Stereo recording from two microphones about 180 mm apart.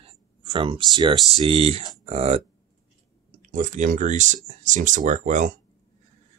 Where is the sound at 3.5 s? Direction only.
45° right (ahead or behind).